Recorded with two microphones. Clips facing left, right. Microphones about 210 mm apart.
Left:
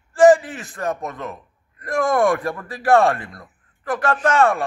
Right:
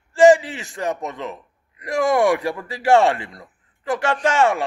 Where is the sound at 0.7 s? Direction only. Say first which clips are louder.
Even; 20° right (ahead or behind).